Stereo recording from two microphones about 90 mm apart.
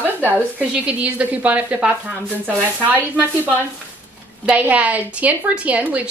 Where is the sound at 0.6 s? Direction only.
15° right (ahead or behind).